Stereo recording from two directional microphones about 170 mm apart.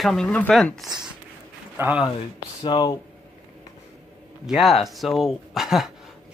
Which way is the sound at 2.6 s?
25° left (ahead or behind).